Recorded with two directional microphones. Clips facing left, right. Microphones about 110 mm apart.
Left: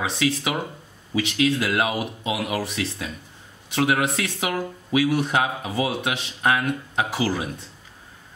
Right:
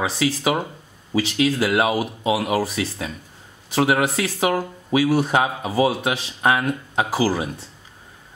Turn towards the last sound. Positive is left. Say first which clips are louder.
# right 4 dB
turn(degrees=-30)  # may be behind; listen again after turning